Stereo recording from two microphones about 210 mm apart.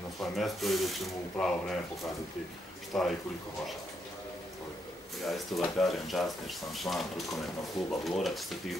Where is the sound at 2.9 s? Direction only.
Centre (ahead or behind).